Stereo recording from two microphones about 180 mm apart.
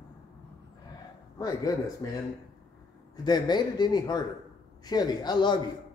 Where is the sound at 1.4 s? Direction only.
20° left (ahead or behind).